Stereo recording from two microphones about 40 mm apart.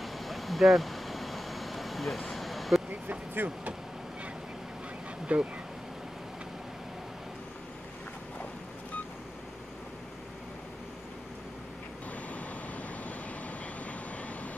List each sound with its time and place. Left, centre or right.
0.0 s vehicle: centre
3.4 s speech: right
5.2 s speech: right
12.3 s vehicle: left